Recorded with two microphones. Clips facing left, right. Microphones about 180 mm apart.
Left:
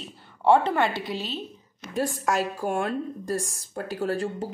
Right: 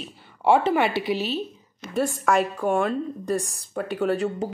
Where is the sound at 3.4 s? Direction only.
65° right (ahead or behind).